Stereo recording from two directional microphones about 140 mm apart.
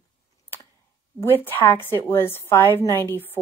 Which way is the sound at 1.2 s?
15° left (ahead or behind).